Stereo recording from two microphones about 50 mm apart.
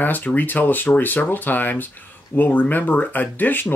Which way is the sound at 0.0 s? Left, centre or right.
Left.